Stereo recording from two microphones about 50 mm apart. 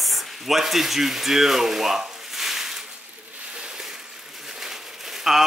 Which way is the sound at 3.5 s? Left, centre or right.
Centre.